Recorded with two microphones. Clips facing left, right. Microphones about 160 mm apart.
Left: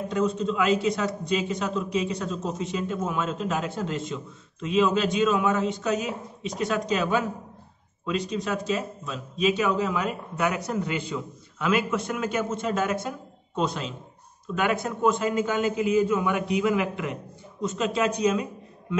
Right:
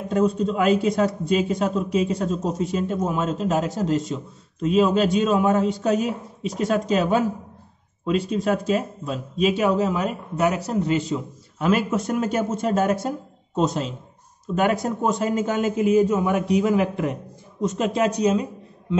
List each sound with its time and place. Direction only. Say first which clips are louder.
0.1 s a man's voice: right 6 dB; 45° right (ahead or behind)
8.3 s a man's voice: right 6 dB; 45° right (ahead or behind)